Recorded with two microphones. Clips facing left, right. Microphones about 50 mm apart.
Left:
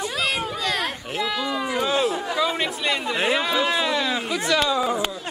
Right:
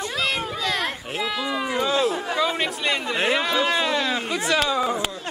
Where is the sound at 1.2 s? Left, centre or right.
Centre.